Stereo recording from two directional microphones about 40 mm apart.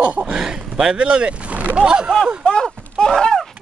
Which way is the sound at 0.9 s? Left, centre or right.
Right.